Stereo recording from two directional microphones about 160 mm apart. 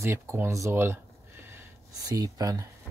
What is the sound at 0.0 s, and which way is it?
Speech, 15° right (ahead or behind).